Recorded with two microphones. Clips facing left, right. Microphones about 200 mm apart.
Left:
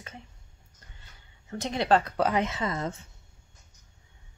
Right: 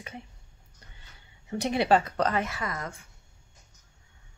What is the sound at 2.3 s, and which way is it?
Speech, 20° left (ahead or behind).